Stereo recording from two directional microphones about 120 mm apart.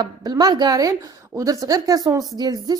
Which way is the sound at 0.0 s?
35° right (ahead or behind).